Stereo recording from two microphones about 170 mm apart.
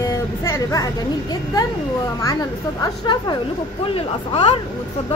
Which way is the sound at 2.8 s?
25° left (ahead or behind).